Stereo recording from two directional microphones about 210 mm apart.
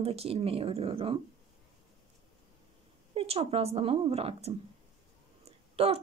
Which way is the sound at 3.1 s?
25° right (ahead or behind).